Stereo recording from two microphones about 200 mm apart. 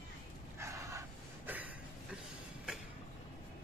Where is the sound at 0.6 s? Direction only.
15° right (ahead or behind).